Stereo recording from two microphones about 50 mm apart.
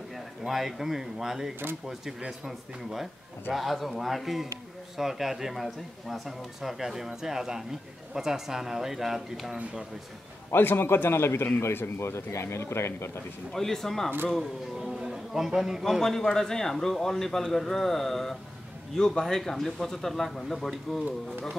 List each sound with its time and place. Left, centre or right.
0.5 s a man's voice: centre
10.5 s a man's voice: left
13.5 s speech: centre
14.8 s a sound: centre
15.8 s a man's voice: centre